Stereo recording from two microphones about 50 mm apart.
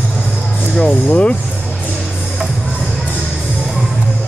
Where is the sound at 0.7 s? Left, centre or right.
Left.